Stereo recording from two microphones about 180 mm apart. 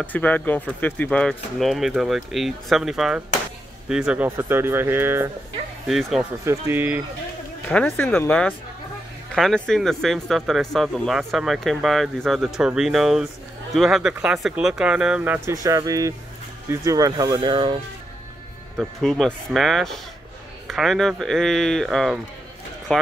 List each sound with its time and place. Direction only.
0.0 s speech: 10° left (ahead or behind); by 5.3 s 15° right (ahead or behind)
5.9 s speech: centre (ahead or behind)
6.4 s speech: 15° right (ahead or behind)
7.6 s speech: 10° left (ahead or behind); by 17.7 s 25° right (ahead or behind)
18.8 s speech: centre (ahead or behind)